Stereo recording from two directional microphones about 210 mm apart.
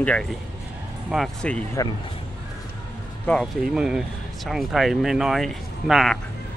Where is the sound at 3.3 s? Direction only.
Centre (ahead or behind).